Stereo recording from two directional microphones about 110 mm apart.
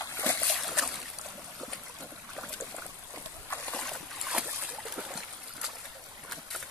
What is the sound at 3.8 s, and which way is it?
Boat, 5° left (ahead or behind).